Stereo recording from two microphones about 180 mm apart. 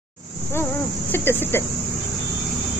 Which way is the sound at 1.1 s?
10° left (ahead or behind).